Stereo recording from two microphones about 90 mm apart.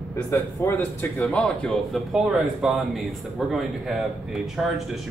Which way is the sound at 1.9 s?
5° right (ahead or behind).